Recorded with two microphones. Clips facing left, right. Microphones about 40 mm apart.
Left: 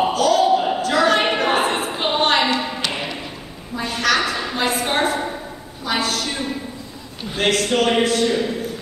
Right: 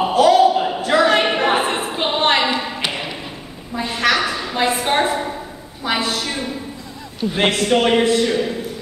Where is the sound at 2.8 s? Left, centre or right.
Centre.